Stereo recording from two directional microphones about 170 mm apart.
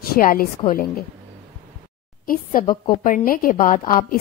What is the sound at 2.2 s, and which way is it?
A woman's voice, 55° left (ahead or behind).